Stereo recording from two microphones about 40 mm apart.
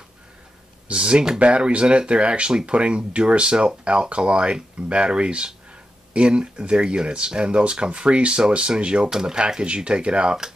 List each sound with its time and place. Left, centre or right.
0.8 s speech: right
1.4 s speech: right
9.1 s speech: centre